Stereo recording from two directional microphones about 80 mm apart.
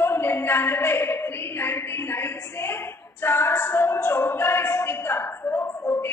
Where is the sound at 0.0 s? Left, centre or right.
Left.